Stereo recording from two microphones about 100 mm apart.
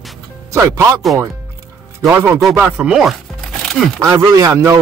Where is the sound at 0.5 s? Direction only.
30° right (ahead or behind).